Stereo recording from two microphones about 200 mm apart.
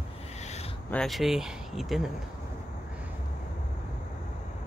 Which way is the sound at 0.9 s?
Centre (ahead or behind).